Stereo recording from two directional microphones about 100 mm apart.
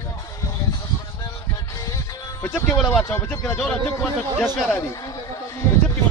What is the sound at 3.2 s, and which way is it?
Speech, 20° left (ahead or behind).